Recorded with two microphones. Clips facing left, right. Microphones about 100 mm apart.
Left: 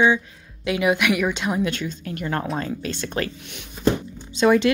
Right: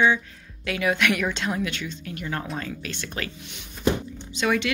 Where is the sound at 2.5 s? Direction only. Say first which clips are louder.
Left 5 dB; 35° left (ahead or behind).